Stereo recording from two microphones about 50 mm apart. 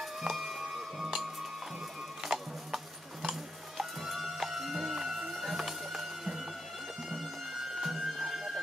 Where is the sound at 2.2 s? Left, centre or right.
Centre.